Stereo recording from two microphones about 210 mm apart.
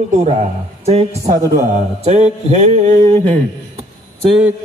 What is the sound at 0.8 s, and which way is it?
Speech, 30° right (ahead or behind).